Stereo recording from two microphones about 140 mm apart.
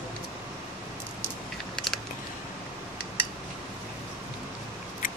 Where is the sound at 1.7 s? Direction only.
Centre (ahead or behind).